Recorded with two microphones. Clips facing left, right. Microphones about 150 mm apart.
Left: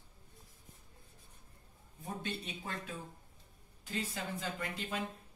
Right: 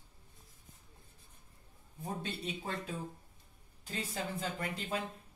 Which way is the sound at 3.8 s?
35° right (ahead or behind).